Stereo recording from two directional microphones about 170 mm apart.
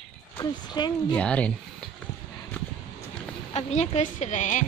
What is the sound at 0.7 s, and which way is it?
Speech, 25° left (ahead or behind).